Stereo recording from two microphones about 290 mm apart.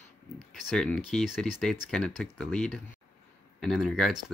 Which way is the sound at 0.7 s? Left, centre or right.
Centre.